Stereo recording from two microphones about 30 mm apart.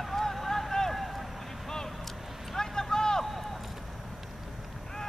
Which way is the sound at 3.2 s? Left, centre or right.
Centre.